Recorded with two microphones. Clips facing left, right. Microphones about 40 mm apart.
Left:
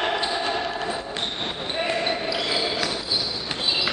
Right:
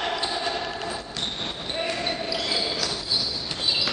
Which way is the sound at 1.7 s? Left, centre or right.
Centre.